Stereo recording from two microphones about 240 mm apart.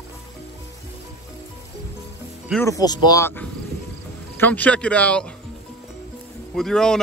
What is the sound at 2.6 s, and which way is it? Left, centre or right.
Speech, centre.